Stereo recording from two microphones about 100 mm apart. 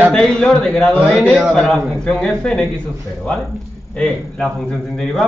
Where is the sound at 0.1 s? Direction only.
5° left (ahead or behind).